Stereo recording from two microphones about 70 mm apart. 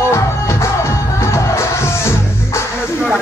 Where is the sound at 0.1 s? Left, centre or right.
Left.